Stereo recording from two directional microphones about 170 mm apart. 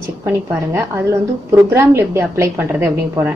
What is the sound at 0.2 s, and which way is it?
A woman's voice, 15° right (ahead or behind).